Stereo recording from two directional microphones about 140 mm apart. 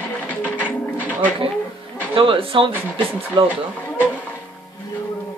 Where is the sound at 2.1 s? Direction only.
40° right (ahead or behind).